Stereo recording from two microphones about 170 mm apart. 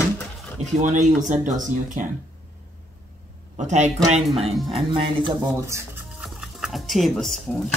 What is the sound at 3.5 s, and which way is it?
Speech, 45° right (ahead or behind).